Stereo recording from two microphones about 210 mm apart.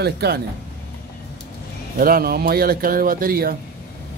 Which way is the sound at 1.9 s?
45° right (ahead or behind).